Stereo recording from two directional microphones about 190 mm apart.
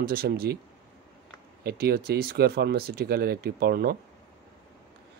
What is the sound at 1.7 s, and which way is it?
Speech, 55° right (ahead or behind).